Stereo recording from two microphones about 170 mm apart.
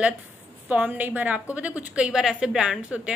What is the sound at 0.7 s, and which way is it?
A woman's voice, 10° right (ahead or behind).